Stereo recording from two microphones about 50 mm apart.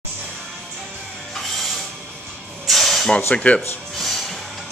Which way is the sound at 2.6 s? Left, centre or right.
Centre.